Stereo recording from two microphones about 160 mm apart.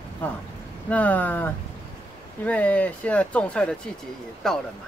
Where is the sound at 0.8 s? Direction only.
10° left (ahead or behind).